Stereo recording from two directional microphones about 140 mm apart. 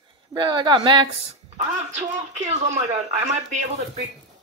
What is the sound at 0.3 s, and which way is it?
Speech, 30° right (ahead or behind).